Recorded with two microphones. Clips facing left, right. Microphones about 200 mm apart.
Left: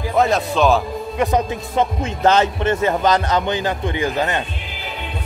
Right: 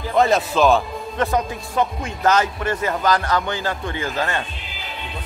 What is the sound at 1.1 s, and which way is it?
A man's voice, 15° left (ahead or behind).